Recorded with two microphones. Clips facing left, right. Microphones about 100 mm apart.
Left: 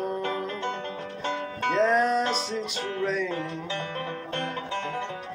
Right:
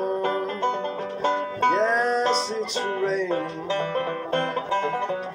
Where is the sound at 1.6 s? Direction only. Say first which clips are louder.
Right 1 dB; 35° right (ahead or behind).